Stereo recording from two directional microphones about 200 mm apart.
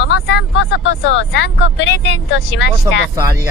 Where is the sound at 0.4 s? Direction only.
65° left (ahead or behind).